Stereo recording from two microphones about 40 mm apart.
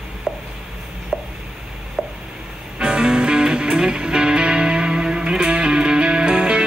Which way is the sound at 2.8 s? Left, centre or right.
Right.